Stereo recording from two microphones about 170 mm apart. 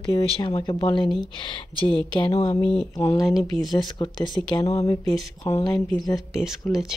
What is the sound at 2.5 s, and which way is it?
Speech, 30° left (ahead or behind).